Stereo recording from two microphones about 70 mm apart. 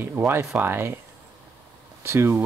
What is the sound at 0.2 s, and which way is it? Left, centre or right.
Speech, right.